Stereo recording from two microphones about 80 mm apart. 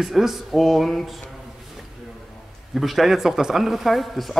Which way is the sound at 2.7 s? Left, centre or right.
Centre.